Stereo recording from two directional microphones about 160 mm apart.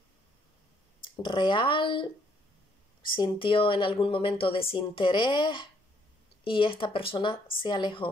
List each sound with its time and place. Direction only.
1.0 s speech: 30° left (ahead or behind)
3.1 s speech: 30° left (ahead or behind)